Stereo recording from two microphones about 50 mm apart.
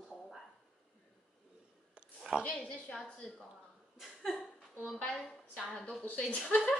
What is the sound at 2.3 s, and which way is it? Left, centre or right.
Speech, centre.